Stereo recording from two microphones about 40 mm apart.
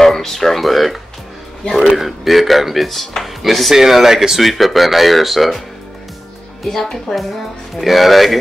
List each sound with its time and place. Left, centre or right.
0.0 s speech: centre
2.0 s speech: centre
6.6 s speech: centre